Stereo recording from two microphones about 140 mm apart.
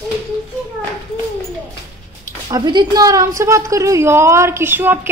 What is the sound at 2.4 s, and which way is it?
A woman's voice, 30° right (ahead or behind).